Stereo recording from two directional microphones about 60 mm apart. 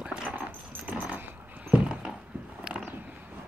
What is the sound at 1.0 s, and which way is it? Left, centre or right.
Dog, right.